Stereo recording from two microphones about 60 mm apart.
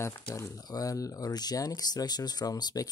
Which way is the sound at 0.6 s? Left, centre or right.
Left.